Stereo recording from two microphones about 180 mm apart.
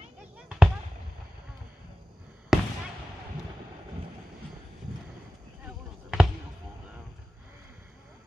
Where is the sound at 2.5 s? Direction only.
Centre (ahead or behind).